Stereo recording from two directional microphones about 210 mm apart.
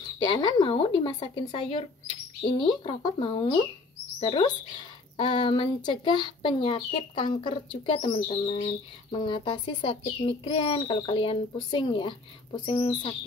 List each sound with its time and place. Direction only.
0.2 s speech: 20° left (ahead or behind)